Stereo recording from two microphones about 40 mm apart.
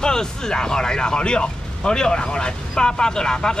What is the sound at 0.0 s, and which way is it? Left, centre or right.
Speech, centre.